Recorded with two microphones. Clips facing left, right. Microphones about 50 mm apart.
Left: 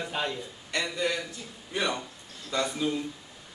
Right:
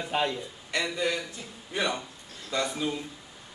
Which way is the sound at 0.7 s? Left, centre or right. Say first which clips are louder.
Right 1 dB; centre.